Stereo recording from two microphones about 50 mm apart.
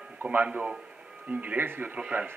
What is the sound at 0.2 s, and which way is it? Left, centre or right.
Speech, right.